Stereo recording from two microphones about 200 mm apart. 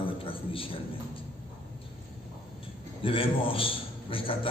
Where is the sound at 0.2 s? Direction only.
25° left (ahead or behind).